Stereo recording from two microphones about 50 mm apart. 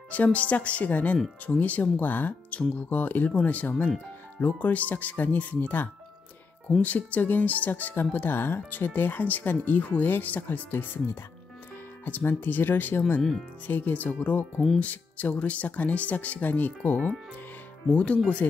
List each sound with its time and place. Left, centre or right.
0.1 s speech: left
18.4 s speech: left